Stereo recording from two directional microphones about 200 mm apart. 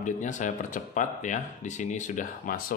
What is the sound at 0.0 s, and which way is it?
Speech, 40° left (ahead or behind).